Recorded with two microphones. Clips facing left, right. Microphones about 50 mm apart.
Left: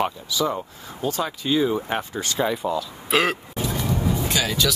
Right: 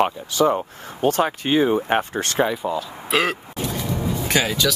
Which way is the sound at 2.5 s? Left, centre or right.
Centre.